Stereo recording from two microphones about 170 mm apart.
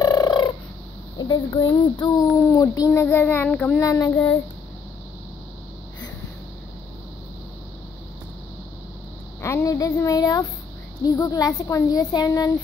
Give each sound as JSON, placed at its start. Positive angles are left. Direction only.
{"t": 0.0, "sound": "fowl", "side_deg": 25}
{"t": 1.1, "sound": "a woman's voice", "side_deg": 25}
{"t": 9.4, "sound": "a woman's voice", "side_deg": 15}